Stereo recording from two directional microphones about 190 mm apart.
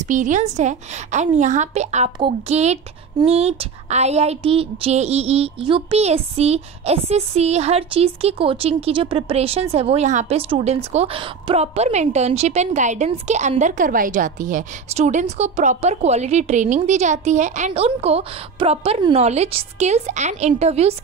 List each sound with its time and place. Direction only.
0.0 s a woman's voice: 40° right (ahead or behind)